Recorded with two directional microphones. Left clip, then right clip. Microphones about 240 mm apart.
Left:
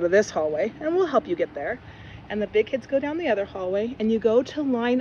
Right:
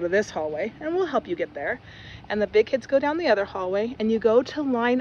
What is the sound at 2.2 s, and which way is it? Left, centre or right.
Speech, centre.